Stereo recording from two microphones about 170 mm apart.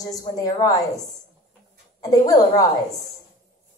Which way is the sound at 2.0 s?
20° left (ahead or behind).